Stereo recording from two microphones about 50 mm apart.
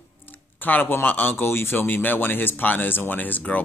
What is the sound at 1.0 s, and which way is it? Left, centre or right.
Speech, left.